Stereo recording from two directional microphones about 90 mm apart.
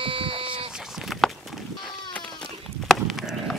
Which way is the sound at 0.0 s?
90° right.